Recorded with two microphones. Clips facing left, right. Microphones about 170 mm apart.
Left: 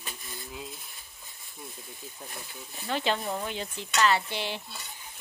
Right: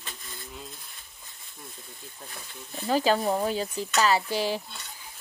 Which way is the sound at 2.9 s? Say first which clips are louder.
Right 6 dB; 40° right (ahead or behind).